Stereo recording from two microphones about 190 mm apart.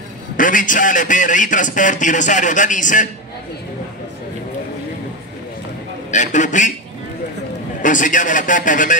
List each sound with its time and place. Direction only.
0.4 s a man's voice: 45° left (ahead or behind)
6.1 s a man's voice: 40° left (ahead or behind)
7.8 s a man's voice: 45° left (ahead or behind)